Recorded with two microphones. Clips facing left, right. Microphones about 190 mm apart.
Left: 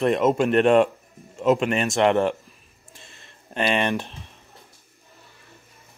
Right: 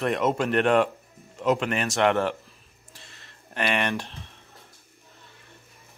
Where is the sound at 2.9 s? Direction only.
20° left (ahead or behind).